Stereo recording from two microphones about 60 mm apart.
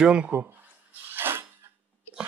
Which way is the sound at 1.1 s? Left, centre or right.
Right.